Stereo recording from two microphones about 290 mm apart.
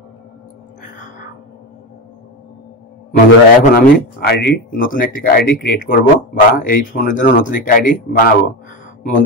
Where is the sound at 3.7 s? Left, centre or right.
Left.